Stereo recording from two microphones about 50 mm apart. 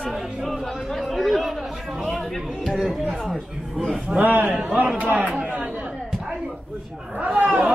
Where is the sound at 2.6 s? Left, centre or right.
Centre.